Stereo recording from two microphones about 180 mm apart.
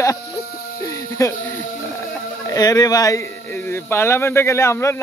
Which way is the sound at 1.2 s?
15° left (ahead or behind).